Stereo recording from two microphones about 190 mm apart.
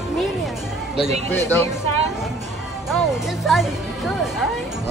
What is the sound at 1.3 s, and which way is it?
Speech, 10° left (ahead or behind).